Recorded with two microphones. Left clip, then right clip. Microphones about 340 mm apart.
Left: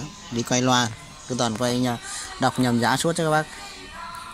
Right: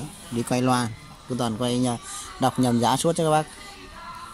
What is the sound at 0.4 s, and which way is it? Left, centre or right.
Speech, centre.